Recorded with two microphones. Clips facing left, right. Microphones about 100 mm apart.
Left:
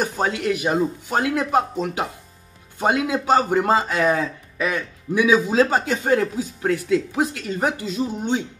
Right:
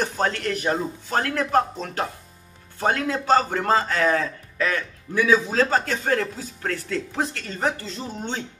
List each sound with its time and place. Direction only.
0.0 s a man's voice: 10° left (ahead or behind)